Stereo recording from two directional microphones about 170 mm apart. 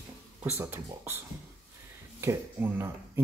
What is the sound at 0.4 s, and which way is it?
Speech, 10° right (ahead or behind).